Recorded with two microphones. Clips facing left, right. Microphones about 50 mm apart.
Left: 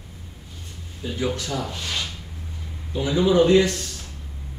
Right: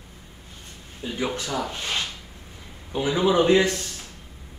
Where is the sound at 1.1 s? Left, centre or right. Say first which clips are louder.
Left 1 dB; right.